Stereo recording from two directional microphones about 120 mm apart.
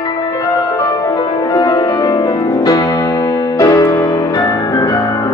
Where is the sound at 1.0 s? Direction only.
30° left (ahead or behind).